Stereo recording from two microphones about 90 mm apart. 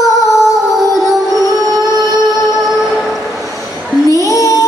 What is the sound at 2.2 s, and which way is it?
Music, centre (ahead or behind).